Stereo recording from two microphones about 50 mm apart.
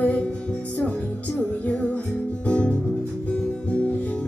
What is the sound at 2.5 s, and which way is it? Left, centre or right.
Music, left.